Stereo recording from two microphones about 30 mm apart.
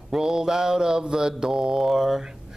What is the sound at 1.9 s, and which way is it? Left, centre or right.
Mantra, centre.